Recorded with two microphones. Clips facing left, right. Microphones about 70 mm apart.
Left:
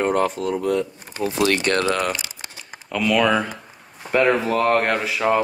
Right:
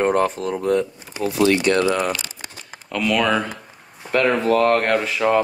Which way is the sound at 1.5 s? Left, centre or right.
Left.